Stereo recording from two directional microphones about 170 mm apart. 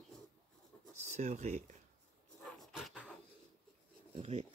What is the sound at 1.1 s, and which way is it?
Speech, 40° right (ahead or behind).